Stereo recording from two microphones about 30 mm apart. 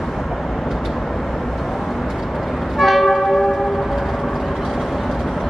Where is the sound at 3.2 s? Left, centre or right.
Centre.